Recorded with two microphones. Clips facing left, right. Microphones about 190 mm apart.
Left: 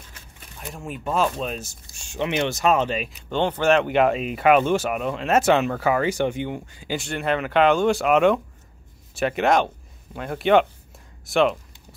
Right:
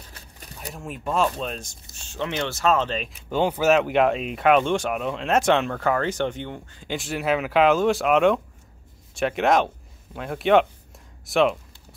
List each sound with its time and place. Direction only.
0.7 s speech: centre (ahead or behind)
3.3 s speech: 5° right (ahead or behind)